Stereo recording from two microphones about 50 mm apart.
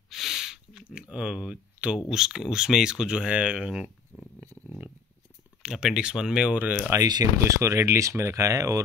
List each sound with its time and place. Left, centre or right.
0.1 s sniff: centre
0.8 s speech: right
2.0 s speech: centre
4.1 s dog: centre
5.7 s speech: centre
6.9 s speech: right